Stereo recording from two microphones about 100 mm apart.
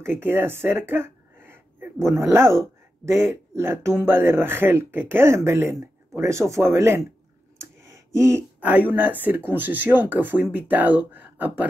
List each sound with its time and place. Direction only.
0.0 s speech: 20° right (ahead or behind)
7.8 s a sound: 30° right (ahead or behind)
8.5 s speech: 15° right (ahead or behind)